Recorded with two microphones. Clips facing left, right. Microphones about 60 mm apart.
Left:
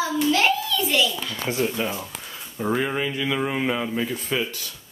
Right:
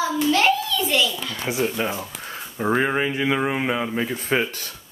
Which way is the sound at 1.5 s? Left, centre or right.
Centre.